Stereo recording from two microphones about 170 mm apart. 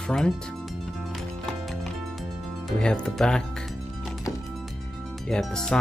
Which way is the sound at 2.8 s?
5° left (ahead or behind).